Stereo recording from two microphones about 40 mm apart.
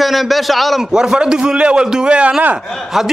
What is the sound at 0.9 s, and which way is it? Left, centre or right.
A man's voice, centre.